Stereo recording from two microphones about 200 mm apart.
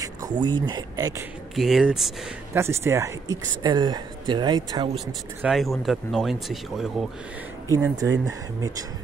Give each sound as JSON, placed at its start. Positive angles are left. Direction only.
{"t": 0.0, "sound": "a sound", "side_deg": -20}
{"t": 0.6, "sound": "a woman's voice", "side_deg": -20}
{"t": 1.5, "sound": "speech", "side_deg": 0}
{"t": 2.5, "sound": "a woman's voice", "side_deg": -15}
{"t": 4.9, "sound": "speech", "side_deg": 0}
{"t": 7.7, "sound": "speech", "side_deg": -15}